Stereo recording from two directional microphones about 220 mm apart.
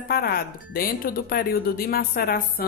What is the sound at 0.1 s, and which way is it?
Speech, 45° left (ahead or behind).